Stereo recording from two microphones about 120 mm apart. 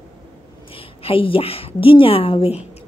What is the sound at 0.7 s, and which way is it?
A woman's voice, 50° left (ahead or behind).